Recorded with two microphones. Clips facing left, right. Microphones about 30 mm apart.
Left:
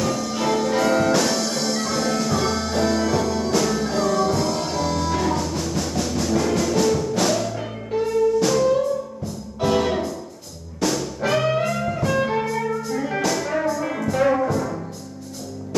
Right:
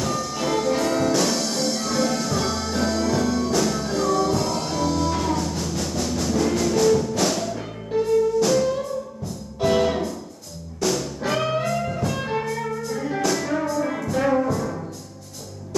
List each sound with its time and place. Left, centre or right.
0.0 s music: centre
4.3 s music: centre
13.3 s music: centre